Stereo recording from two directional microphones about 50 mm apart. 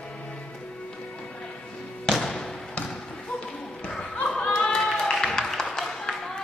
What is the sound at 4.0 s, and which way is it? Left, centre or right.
Basketball bounce, centre.